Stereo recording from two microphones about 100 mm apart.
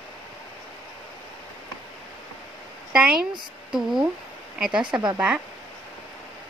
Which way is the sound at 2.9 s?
5° right (ahead or behind).